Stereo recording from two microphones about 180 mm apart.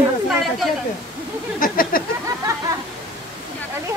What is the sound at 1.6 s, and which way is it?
Speech, 50° left (ahead or behind).